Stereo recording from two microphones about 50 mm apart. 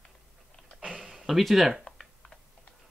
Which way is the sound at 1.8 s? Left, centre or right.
Centre.